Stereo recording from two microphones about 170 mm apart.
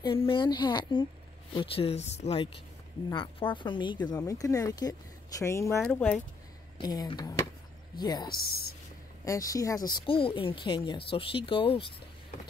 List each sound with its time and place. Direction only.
0.0 s speech: 30° left (ahead or behind); by 6.1 s 5° left (ahead or behind)
6.8 s speech: 25° left (ahead or behind)
8.3 s speech: 65° left (ahead or behind)
9.2 s speech: 20° left (ahead or behind)